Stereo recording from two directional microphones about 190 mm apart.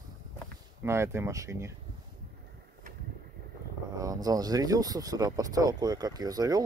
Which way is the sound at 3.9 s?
20° right (ahead or behind).